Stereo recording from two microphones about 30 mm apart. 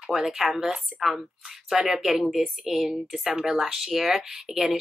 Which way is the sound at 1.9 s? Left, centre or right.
Centre.